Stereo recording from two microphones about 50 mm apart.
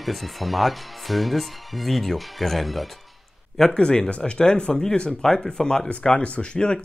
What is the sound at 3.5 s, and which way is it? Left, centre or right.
Speech, centre.